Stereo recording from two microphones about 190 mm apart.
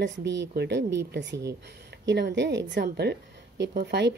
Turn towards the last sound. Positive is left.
turn(degrees=-60)  # may be behind; listen again after turning